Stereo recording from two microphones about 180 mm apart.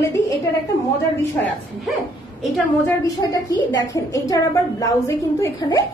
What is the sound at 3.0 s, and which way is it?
A woman's voice, 20° left (ahead or behind).